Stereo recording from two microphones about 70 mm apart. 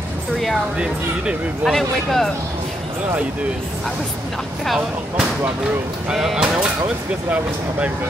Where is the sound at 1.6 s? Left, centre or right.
Centre.